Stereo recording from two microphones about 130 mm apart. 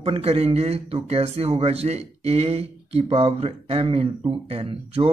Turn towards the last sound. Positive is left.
turn(degrees=-50)  # may be behind; listen again after turning